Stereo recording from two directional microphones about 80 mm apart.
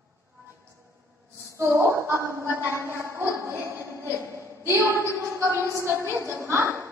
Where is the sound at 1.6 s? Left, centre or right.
Right.